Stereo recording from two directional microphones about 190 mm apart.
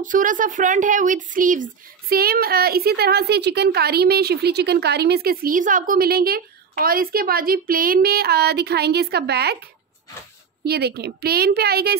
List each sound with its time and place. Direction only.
0.0 s speech: 45° right (ahead or behind)
10.6 s a woman's voice: 55° right (ahead or behind)